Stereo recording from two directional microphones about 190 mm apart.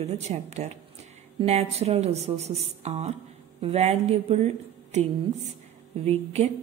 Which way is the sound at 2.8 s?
35° right (ahead or behind).